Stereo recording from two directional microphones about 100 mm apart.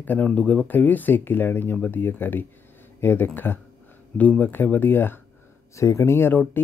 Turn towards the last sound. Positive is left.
turn(degrees=20)  # may be behind; listen again after turning